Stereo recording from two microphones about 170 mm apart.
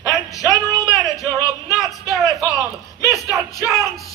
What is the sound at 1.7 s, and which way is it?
Speech, centre (ahead or behind).